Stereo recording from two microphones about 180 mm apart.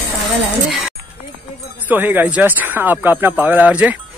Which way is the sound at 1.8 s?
10° right (ahead or behind).